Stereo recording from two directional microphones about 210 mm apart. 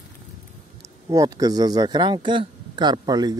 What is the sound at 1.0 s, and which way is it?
Speech, 15° right (ahead or behind).